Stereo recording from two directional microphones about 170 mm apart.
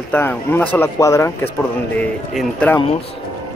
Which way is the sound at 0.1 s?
10° left (ahead or behind).